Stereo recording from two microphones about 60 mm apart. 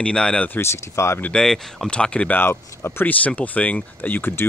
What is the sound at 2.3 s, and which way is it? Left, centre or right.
Speech, left.